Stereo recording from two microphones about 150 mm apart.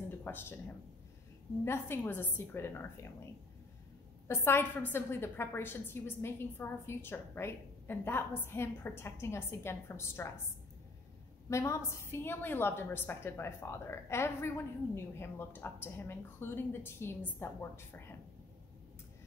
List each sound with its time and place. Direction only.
0.2 s speech: 15° left (ahead or behind)
1.6 s a woman's voice: 15° left (ahead or behind)
4.3 s a woman's voice: 15° left (ahead or behind)
11.5 s a woman's voice: 20° left (ahead or behind)